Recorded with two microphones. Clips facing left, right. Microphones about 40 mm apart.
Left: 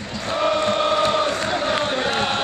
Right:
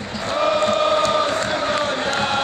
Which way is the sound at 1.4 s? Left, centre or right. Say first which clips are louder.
Right 1 dB; centre.